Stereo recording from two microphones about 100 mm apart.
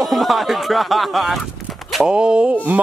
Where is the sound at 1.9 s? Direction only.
10° right (ahead or behind).